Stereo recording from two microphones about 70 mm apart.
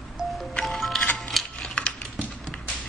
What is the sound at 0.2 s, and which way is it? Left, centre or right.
Music, centre.